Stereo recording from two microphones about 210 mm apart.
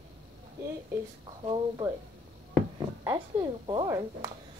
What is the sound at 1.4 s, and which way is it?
Speech, 20° right (ahead or behind).